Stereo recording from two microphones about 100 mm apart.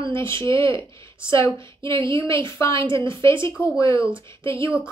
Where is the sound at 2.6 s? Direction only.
55° right (ahead or behind).